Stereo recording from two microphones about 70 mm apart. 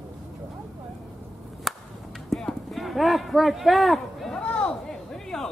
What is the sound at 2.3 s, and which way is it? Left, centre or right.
Clip-clop, centre.